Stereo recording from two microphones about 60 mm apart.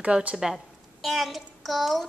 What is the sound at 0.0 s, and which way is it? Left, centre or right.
Speech, right.